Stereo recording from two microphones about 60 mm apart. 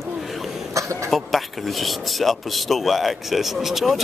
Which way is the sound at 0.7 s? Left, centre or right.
Right.